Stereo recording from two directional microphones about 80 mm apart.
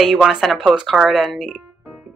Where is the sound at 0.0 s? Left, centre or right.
Centre.